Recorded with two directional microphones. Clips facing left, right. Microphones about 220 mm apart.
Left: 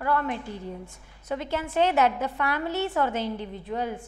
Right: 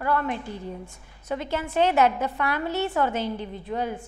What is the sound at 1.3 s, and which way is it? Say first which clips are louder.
A woman's voice: right 1 dB; 10° right (ahead or behind).